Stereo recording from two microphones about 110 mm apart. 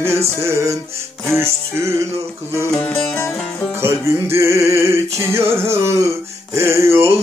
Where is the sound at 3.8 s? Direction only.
25° right (ahead or behind).